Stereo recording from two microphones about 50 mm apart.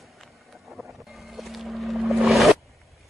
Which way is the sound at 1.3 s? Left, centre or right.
Centre.